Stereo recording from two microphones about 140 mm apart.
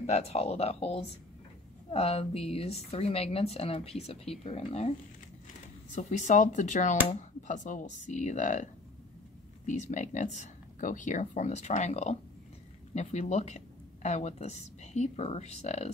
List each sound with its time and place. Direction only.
0.0 s speech: 50° left (ahead or behind); by 8.6 s 65° left (ahead or behind)
9.7 s speech: 60° left (ahead or behind)